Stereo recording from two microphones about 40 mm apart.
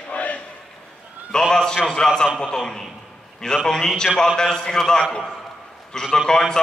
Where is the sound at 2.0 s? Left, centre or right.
Centre.